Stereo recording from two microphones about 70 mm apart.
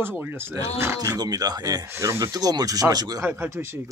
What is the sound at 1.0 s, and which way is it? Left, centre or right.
Speech, right.